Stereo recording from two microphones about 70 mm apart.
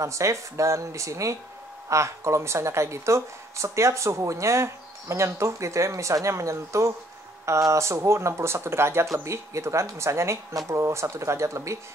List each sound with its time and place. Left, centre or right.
0.0 s a woman's voice: right